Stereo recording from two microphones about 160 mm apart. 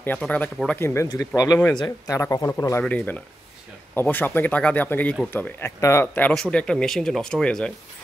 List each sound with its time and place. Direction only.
0.0 s speech: 10° left (ahead or behind)
2.8 s speech: 10° left (ahead or behind)